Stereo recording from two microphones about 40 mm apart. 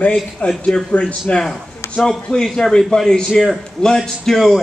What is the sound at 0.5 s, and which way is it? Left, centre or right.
Speech, centre.